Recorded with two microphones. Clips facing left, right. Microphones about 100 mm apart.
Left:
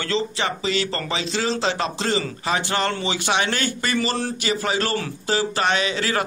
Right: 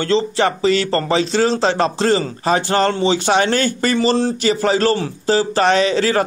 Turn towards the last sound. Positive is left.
turn(degrees=-35)  # may be behind; listen again after turning